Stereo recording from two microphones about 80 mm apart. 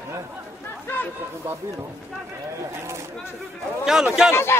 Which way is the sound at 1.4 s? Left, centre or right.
Right.